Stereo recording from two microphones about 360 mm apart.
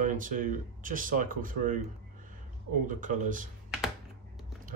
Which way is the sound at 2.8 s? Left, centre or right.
Right.